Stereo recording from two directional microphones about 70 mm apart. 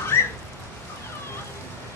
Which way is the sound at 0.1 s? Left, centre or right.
Left.